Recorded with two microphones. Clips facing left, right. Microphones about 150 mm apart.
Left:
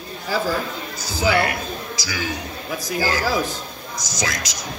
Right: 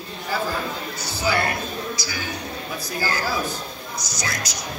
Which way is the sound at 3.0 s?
90° left.